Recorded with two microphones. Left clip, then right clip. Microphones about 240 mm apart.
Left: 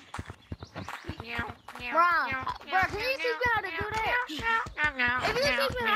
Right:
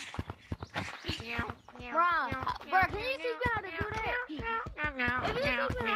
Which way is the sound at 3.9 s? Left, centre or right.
Left.